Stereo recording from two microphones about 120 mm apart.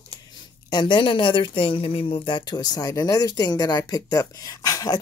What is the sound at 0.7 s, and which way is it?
Speech, 40° left (ahead or behind).